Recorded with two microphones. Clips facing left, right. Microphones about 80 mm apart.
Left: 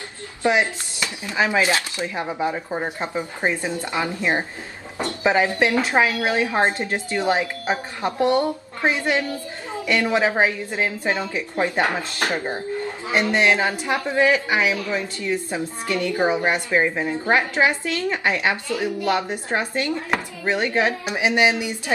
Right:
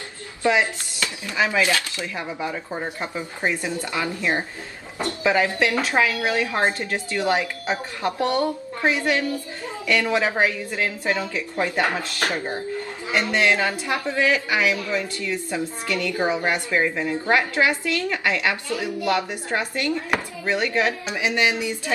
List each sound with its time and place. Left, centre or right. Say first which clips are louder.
0.4 s a man's voice: left 1 dB; left